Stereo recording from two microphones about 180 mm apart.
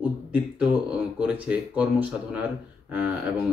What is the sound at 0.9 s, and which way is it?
Speech, 5° right (ahead or behind).